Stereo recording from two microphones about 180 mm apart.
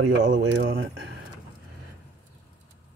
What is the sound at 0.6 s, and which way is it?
Speech, 90° right.